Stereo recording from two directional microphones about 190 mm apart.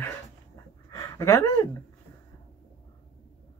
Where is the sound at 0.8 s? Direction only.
20° left (ahead or behind).